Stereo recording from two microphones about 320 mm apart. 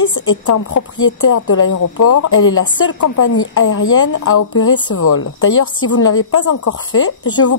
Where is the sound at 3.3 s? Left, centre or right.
Left.